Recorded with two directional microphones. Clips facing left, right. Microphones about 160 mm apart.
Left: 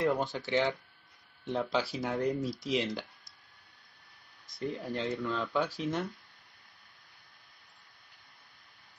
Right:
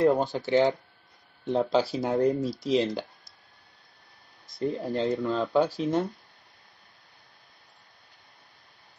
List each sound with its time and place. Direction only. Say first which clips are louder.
0.0 s speech: right 7 dB; 35° right (ahead or behind)
4.6 s speech: right 7 dB; 35° right (ahead or behind)